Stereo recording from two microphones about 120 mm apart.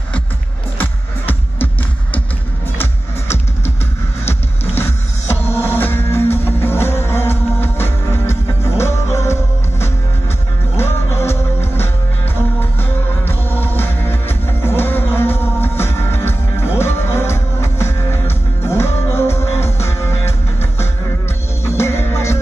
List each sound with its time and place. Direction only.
0.7 s music: 15° left (ahead or behind)
4.3 s music: 20° left (ahead or behind)
13.2 s music: 15° left (ahead or behind)